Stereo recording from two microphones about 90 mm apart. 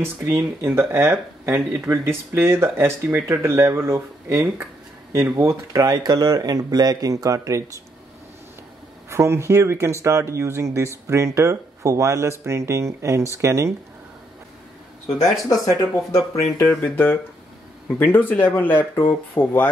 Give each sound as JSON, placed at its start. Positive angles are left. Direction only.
{"t": 0.0, "sound": "speech", "side_deg": -30}
{"t": 9.1, "sound": "speech", "side_deg": -30}
{"t": 15.0, "sound": "speech", "side_deg": 0}
{"t": 15.4, "sound": "speech", "side_deg": 40}